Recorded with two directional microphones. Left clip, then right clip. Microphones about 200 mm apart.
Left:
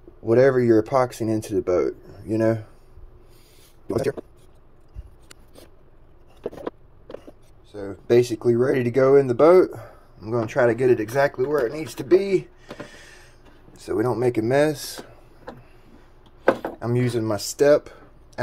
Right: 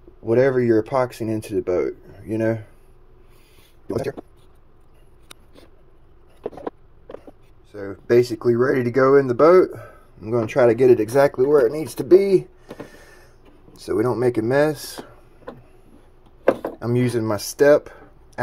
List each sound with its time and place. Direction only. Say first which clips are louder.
0.2 s speech: left 1 dB; 5° right (ahead or behind)
3.8 s speech: left 2 dB; centre (ahead or behind)
7.7 s speech: right 1 dB; 15° right (ahead or behind)
12.8 s a sound: left 1 dB; 25° right (ahead or behind)
13.7 s speech: right 2 dB; 25° right (ahead or behind)
16.8 s speech: right 3 dB; 25° right (ahead or behind)